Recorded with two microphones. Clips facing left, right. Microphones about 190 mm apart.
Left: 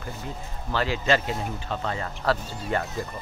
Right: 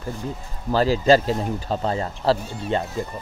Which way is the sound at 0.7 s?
35° right (ahead or behind).